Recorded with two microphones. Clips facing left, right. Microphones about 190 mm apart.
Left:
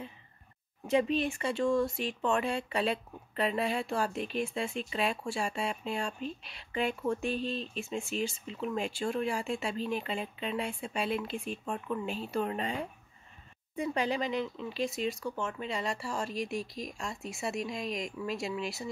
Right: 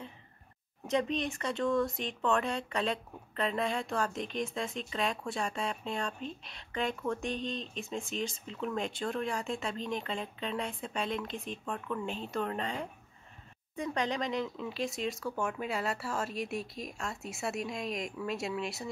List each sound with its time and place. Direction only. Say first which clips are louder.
0.8 s speech: left 3 dB; 10° left (ahead or behind)
1.7 s speech: left 1 dB; 25° left (ahead or behind)
2.0 s speech: even; 10° left (ahead or behind)